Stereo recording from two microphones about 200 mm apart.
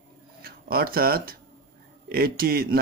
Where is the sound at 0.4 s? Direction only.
50° right (ahead or behind).